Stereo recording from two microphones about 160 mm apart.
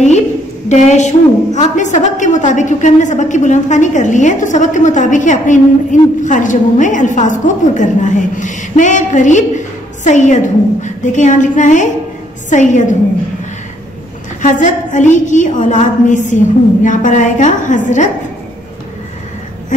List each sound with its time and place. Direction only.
0.7 s a woman's voice: 45° left (ahead or behind)
14.4 s a woman's voice: 50° left (ahead or behind)